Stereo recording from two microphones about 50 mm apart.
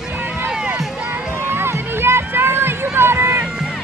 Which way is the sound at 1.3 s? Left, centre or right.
Right.